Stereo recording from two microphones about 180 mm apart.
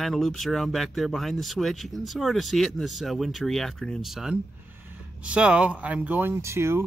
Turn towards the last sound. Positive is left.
turn(degrees=-15)  # may be behind; listen again after turning